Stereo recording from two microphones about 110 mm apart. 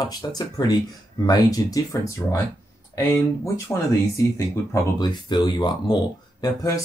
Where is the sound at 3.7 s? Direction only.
20° left (ahead or behind).